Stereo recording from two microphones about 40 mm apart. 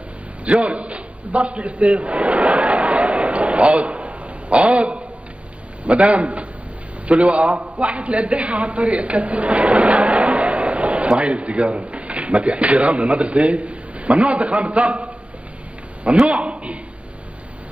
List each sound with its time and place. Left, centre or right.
0.5 s a sound: right
5.9 s a woman's voice: right
16.3 s speech: right